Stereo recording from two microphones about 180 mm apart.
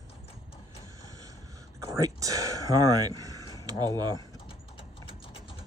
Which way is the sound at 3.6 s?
20° right (ahead or behind).